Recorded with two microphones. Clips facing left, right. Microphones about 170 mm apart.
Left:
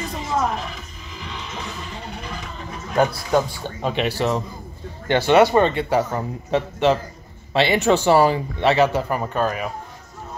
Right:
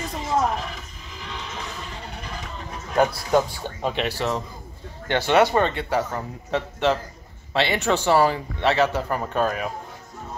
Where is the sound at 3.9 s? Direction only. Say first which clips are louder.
Left 6 dB; 10° left (ahead or behind).